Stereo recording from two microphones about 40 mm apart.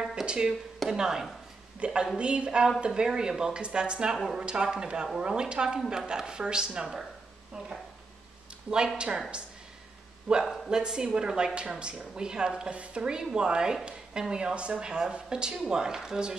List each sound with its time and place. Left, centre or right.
0.0 s a sound: right
0.8 s speech: centre
1.8 s speech: right
8.6 s speech: right
10.4 s a man's voice: centre
10.7 s speech: centre